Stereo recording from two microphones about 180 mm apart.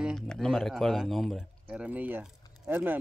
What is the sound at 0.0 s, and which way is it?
Speech, centre (ahead or behind).